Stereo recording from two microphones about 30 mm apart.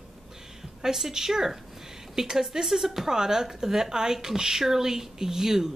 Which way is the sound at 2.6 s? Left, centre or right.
Centre.